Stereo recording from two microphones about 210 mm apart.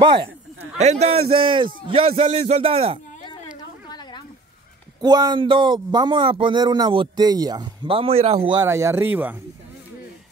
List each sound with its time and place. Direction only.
0.0 s speech: 25° right (ahead or behind)
3.9 s a sound: 20° left (ahead or behind)
5.0 s speech: 20° right (ahead or behind)